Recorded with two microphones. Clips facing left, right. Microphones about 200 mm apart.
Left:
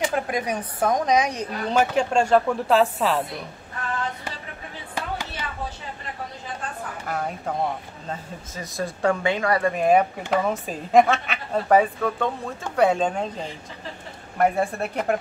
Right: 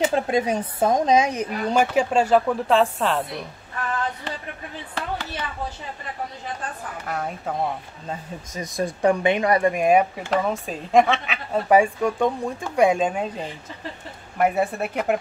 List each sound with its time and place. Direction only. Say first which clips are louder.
0.1 s speech: right 4 dB; 25° right (ahead or behind)
1.7 s speech: right 1 dB; 10° right (ahead or behind)
4.9 s a sound: right 1 dB; 10° left (ahead or behind)
7.1 s speech: even; centre (ahead or behind)
8.1 s a woman's voice: right 2 dB; 15° right (ahead or behind)
10.3 s a woman's voice: even; centre (ahead or behind)